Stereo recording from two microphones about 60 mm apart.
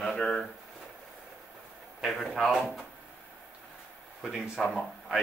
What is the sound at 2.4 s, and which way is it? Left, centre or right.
Speech, centre.